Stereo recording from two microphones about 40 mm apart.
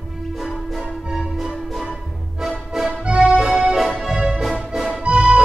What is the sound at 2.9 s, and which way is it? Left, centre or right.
Music, right.